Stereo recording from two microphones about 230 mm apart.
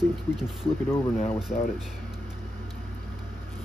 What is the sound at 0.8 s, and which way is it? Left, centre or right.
Speech, centre.